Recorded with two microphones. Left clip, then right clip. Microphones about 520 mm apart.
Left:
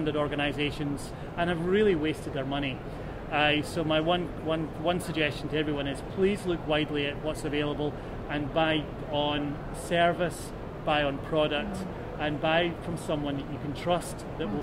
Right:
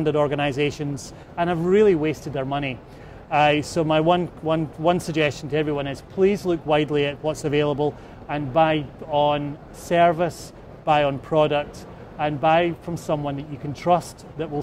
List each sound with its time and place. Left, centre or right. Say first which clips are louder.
0.0 s speech: right 8 dB; right